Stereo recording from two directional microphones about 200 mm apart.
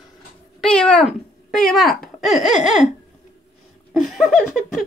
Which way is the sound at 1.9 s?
Centre (ahead or behind).